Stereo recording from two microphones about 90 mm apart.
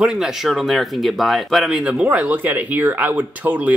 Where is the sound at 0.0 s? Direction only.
5° right (ahead or behind).